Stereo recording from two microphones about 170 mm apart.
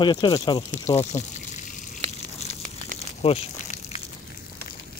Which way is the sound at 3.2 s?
40° left (ahead or behind).